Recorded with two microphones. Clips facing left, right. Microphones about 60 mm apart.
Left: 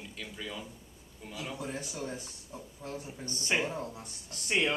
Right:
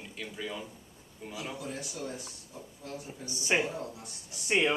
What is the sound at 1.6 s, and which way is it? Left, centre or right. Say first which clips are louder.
Speech: left 1 dB; left.